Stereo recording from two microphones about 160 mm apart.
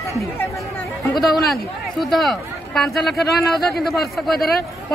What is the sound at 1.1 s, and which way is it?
A man's voice, centre (ahead or behind).